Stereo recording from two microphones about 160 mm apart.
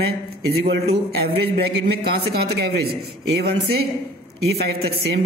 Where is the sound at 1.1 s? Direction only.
90° right.